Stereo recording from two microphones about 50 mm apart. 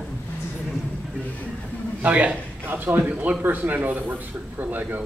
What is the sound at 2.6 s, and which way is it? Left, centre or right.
A man's voice, right.